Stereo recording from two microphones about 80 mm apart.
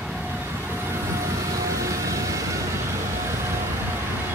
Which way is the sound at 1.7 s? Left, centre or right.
Right.